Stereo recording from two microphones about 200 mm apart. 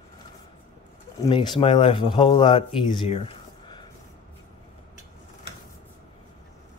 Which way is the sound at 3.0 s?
30° left (ahead or behind).